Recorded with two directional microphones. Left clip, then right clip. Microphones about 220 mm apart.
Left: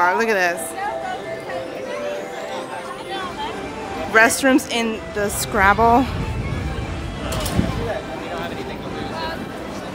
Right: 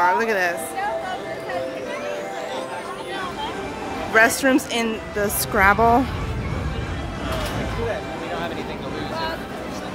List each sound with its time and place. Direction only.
0.0 s a woman's voice: 15° left (ahead or behind)
4.1 s a woman's voice: 15° left (ahead or behind)